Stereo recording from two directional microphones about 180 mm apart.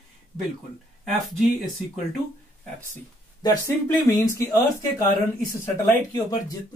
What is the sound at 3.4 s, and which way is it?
Speech, 25° left (ahead or behind).